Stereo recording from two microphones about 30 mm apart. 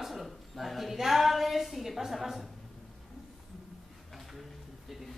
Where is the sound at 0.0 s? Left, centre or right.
Centre.